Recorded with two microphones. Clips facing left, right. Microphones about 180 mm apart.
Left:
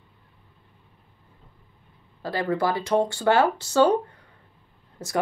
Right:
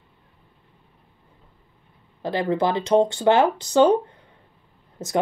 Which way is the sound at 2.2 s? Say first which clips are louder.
Right 3 dB; 20° right (ahead or behind).